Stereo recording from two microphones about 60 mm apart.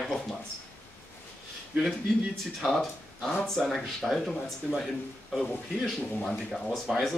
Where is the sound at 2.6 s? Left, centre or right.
Centre.